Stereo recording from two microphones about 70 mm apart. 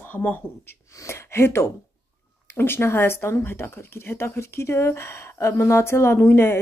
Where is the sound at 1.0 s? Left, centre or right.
Left.